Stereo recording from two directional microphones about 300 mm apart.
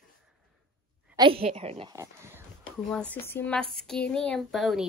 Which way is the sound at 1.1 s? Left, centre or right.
Centre.